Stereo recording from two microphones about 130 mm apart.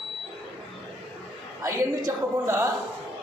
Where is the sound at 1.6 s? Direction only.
25° right (ahead or behind).